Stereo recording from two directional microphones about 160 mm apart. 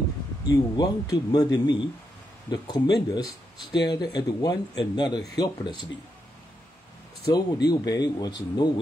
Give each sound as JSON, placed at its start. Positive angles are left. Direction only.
{"t": 0.5, "sound": "speech", "side_deg": 20}
{"t": 7.3, "sound": "speech", "side_deg": 25}